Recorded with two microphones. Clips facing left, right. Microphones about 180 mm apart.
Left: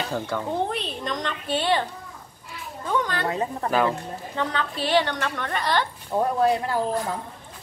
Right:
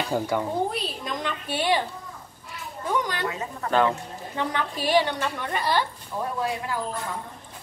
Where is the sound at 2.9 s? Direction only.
15° right (ahead or behind).